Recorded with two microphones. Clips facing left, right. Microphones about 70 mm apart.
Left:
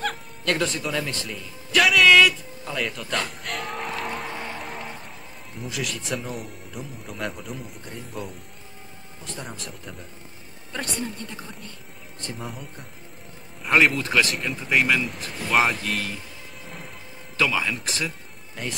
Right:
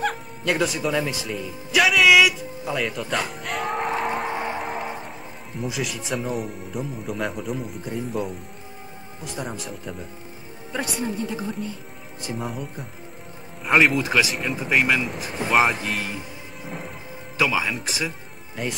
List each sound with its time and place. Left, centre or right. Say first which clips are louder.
0.0 s speech: right 3 dB; centre
4.3 s music: right 6 dB; right
5.6 s speech: right 3 dB; centre
15.8 s speech: right 1 dB; centre